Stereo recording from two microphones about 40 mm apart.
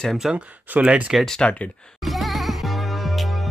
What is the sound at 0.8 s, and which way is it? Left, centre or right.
Speech, right.